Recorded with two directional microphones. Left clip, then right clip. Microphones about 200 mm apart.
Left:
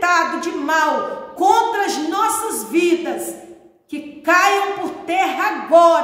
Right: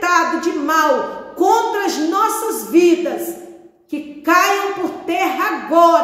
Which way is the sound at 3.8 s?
15° left (ahead or behind).